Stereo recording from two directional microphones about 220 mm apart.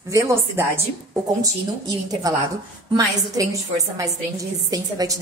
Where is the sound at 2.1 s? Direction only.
15° right (ahead or behind).